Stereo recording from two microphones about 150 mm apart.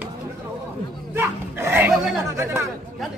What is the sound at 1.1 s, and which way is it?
Dog, 15° right (ahead or behind).